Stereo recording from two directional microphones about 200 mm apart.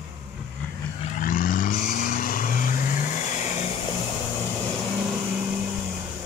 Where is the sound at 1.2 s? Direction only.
45° left (ahead or behind).